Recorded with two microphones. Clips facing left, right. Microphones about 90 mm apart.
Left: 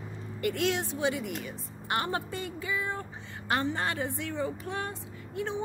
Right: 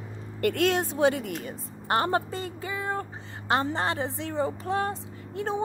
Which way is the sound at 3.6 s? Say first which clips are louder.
Right 3 dB; 30° right (ahead or behind).